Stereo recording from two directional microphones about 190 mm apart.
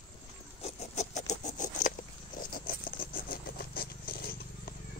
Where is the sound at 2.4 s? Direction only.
50° left (ahead or behind).